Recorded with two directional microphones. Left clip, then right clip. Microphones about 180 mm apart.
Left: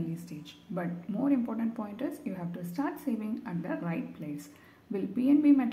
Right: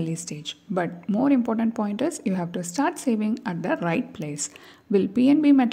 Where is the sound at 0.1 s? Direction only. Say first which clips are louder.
Right 11 dB; 50° right (ahead or behind).